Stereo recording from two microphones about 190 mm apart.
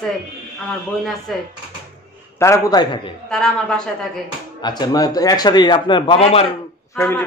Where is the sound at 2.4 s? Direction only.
15° left (ahead or behind).